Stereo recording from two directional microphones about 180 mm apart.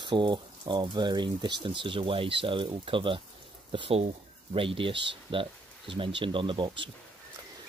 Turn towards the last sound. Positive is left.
turn(degrees=-30)  # may be behind; listen again after turning